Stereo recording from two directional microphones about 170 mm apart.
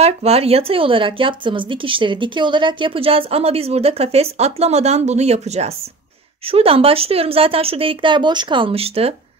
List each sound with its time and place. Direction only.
0.0 s speech: 40° right (ahead or behind)